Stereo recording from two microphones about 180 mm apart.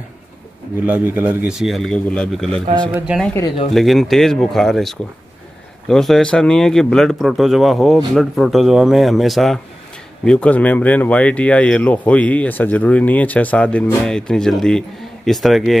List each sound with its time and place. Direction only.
0.8 s a man's voice: 10° right (ahead or behind)
3.3 s speech: 20° left (ahead or behind)
3.7 s a man's voice: centre (ahead or behind)